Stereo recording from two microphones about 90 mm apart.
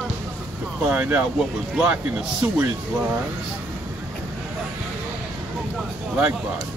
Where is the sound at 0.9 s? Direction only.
20° right (ahead or behind).